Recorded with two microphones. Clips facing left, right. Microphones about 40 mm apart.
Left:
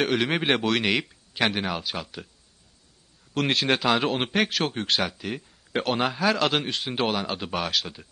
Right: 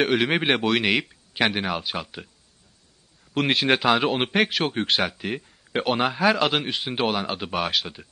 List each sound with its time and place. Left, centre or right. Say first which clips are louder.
0.0 s a man's voice: right 3 dB; centre
3.3 s a man's voice: right 2 dB; centre